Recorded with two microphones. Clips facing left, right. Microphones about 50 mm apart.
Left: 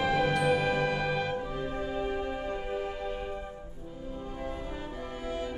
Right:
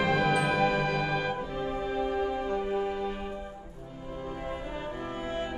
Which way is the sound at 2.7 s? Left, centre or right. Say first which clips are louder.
Right 4 dB; centre.